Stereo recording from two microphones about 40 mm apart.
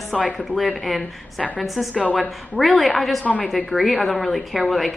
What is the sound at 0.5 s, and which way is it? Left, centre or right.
A woman's voice, centre.